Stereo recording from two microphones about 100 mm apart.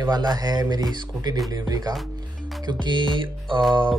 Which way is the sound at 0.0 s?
40° right (ahead or behind).